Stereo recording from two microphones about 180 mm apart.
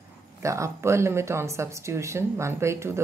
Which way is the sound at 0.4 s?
15° right (ahead or behind).